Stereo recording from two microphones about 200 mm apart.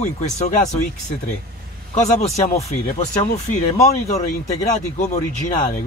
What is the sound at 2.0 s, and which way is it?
Speech, 35° left (ahead or behind).